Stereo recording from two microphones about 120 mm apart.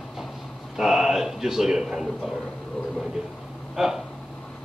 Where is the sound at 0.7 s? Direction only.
5° right (ahead or behind).